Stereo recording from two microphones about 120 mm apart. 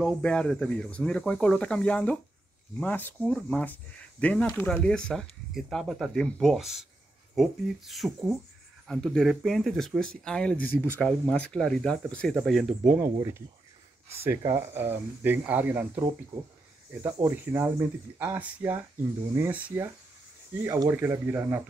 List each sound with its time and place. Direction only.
0.0 s speech: 5° left (ahead or behind)
13.0 s speech: 25° right (ahead or behind)
17.5 s speech: 20° right (ahead or behind)